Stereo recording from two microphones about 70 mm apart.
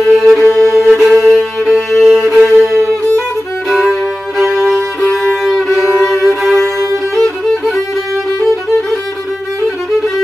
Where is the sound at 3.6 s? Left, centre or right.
Centre.